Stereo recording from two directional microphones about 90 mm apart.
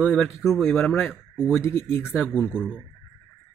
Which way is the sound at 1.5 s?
30° left (ahead or behind).